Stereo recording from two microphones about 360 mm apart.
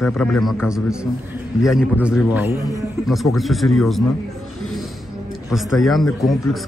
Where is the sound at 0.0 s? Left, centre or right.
Centre.